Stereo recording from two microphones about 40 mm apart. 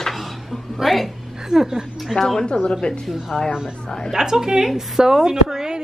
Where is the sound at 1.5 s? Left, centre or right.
Centre.